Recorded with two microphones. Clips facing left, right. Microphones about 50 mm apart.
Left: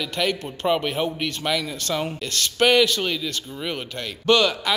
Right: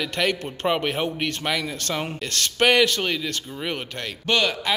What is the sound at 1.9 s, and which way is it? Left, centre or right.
Speech, right.